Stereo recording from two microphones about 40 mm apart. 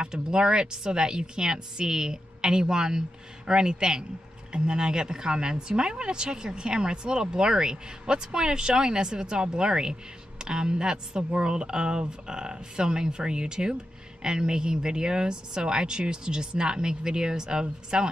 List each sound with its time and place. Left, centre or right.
0.0 s speech: right